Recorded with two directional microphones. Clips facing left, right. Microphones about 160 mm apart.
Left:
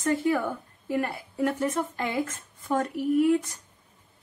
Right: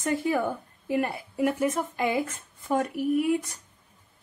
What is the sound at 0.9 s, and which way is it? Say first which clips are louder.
A woman's voice: right 1 dB; 15° right (ahead or behind).